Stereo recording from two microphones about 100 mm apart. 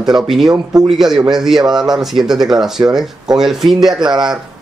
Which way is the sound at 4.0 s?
45° right (ahead or behind).